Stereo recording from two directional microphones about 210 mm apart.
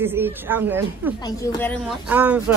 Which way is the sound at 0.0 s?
10° right (ahead or behind).